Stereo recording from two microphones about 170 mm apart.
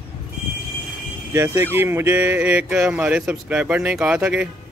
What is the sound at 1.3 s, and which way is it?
Speech, 15° right (ahead or behind).